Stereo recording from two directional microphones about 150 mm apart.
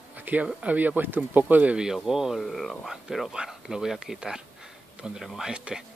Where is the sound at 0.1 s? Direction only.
10° right (ahead or behind).